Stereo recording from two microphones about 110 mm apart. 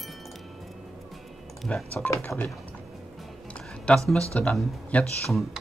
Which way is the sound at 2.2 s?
15° left (ahead or behind).